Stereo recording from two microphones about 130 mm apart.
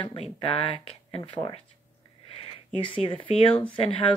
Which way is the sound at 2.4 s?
45° left (ahead or behind).